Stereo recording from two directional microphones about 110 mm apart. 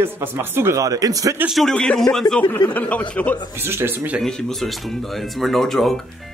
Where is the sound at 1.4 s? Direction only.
Centre (ahead or behind).